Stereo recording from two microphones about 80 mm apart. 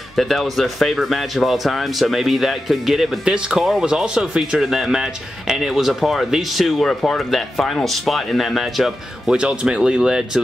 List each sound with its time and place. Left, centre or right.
0.1 s speech: centre